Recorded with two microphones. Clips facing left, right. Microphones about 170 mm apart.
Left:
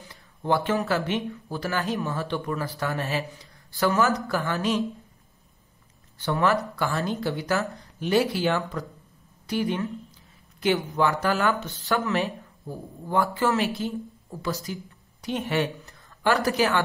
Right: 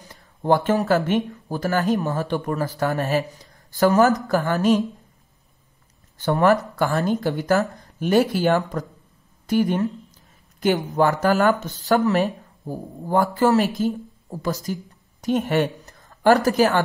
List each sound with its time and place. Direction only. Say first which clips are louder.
0.0 s speech: right 5 dB; 45° right (ahead or behind)
6.1 s speech: right 6 dB; 45° right (ahead or behind)